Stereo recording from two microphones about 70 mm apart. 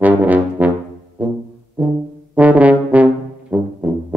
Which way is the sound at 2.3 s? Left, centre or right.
Centre.